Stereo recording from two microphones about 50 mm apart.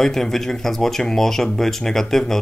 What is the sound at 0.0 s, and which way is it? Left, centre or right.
Speech, centre.